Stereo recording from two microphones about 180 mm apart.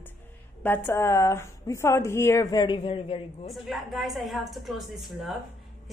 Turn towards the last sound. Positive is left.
turn(degrees=0)  # may be behind; listen again after turning